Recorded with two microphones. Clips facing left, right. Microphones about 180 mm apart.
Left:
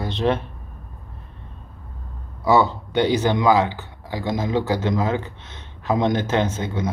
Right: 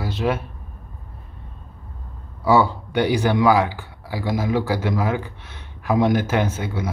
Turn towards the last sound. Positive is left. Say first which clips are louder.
# left 1 dB
turn(degrees=-10)  # may be behind; listen again after turning